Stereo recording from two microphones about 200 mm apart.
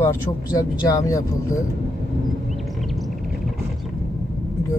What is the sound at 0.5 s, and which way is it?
Speech, 20° left (ahead or behind).